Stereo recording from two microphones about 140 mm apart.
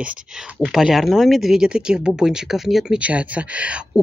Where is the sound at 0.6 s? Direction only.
5° right (ahead or behind).